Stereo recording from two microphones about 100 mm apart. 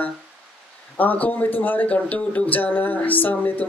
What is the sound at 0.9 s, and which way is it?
Speech, 15° left (ahead or behind).